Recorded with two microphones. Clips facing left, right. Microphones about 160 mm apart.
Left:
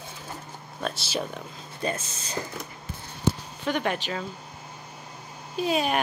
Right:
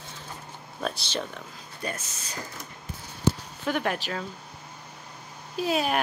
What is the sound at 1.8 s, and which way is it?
Speech, 25° left (ahead or behind).